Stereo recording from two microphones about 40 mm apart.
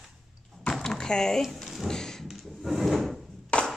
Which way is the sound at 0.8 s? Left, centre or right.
Centre.